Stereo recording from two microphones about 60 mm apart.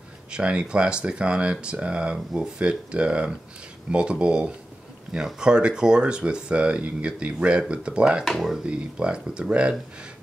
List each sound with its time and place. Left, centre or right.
0.3 s speech: centre
8.3 s speech: centre
8.6 s speech: centre